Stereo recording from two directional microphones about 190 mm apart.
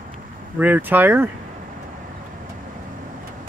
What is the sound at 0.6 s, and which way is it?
Speech, 10° right (ahead or behind).